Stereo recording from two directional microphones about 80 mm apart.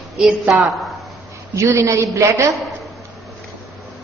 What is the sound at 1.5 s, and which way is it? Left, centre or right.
A woman's voice, right.